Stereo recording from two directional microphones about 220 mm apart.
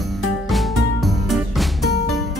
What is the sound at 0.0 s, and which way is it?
Music, centre (ahead or behind).